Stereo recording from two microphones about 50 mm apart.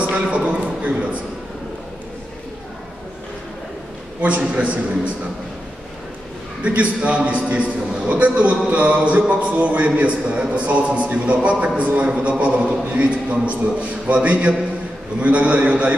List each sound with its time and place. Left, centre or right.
0.1 s a sound: right
4.4 s a man's voice: right
6.6 s a man's voice: right